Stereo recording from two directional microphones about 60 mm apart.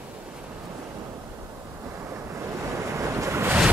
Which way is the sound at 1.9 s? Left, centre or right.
Right.